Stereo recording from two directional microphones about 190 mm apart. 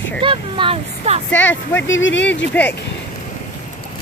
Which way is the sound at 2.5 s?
10° left (ahead or behind).